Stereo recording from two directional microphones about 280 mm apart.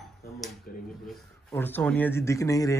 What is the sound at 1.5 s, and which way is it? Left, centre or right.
A man's voice, centre.